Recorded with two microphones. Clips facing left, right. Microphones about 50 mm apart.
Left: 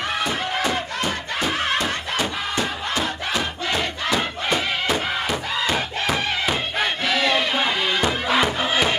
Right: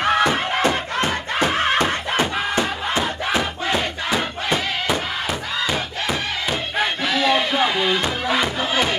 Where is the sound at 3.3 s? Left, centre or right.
Right.